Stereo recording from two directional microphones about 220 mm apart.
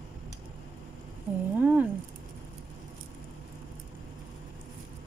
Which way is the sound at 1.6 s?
5° right (ahead or behind).